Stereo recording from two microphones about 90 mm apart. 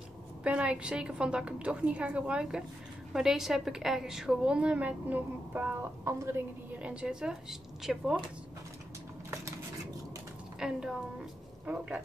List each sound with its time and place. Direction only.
0.4 s a woman's voice: 15° right (ahead or behind)
6.0 s a woman's voice: 35° right (ahead or behind)
6.8 s a woman's voice: 10° right (ahead or behind)
10.6 s a woman's voice: 5° right (ahead or behind)